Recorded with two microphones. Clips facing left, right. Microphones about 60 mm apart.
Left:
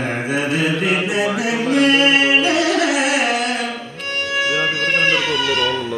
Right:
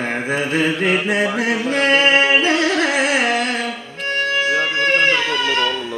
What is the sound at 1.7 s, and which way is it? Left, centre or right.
Music, right.